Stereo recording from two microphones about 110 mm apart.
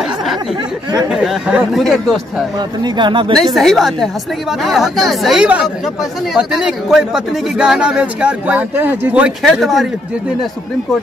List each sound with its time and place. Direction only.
0.9 s speech: 5° right (ahead or behind)
2.8 s speech: 45° right (ahead or behind)
3.5 s speech: centre (ahead or behind)
9.4 s speech: centre (ahead or behind)